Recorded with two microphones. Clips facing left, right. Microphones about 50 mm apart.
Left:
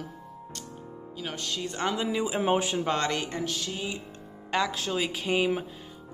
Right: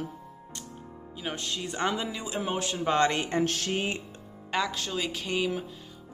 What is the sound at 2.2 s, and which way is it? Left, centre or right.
Speech, centre.